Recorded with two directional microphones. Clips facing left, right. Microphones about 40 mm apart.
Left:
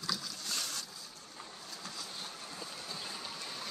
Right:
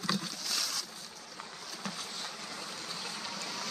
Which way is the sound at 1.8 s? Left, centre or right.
Right.